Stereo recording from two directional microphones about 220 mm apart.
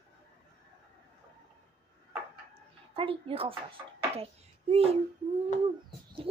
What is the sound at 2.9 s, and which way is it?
Speech, 25° right (ahead or behind).